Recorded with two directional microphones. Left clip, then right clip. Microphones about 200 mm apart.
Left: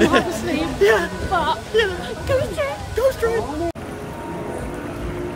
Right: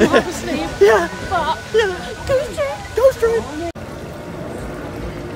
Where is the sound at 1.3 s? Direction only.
15° left (ahead or behind).